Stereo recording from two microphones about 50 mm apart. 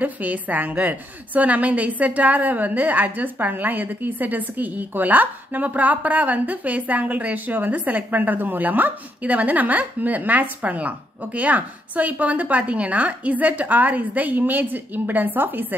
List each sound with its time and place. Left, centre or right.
0.0 s a woman's voice: right